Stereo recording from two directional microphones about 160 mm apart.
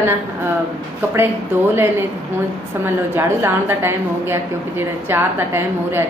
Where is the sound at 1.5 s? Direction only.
10° right (ahead or behind).